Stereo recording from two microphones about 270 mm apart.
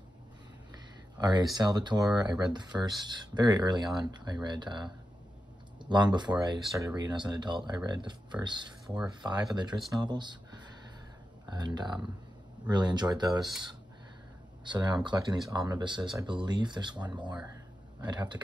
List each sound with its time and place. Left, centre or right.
1.1 s speech: centre
5.9 s speech: centre
14.6 s speech: centre